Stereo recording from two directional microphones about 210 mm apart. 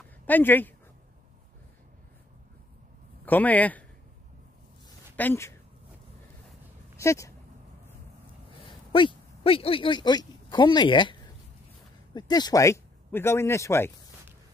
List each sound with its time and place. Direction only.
0.3 s a man's voice: 10° left (ahead or behind)
3.3 s a man's voice: 10° left (ahead or behind)
5.1 s a woman's voice: 10° left (ahead or behind)
7.0 s speech: 15° left (ahead or behind)
8.5 s a man's voice: 25° left (ahead or behind)